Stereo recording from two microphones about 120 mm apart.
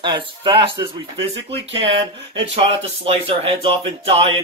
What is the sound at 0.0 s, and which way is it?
Speech, 40° right (ahead or behind).